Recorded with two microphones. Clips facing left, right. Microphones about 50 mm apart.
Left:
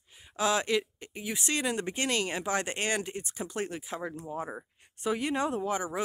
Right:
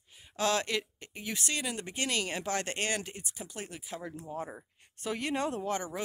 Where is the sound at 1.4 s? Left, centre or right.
Left.